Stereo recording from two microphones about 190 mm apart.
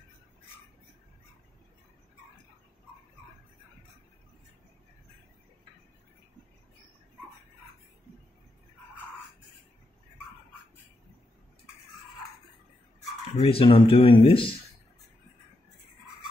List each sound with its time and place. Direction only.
13.4 s speech: 30° left (ahead or behind)